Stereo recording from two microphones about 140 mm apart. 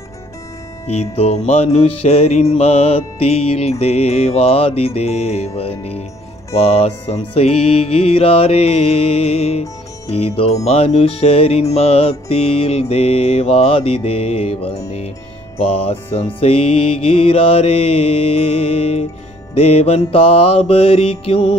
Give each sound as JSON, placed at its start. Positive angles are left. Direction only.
{"t": 0.8, "sound": "music", "side_deg": 50}